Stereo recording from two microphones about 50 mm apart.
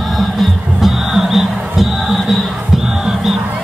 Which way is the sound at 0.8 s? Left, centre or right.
Centre.